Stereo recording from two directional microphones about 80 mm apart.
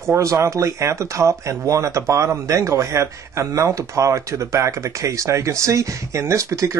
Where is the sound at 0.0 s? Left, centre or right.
Right.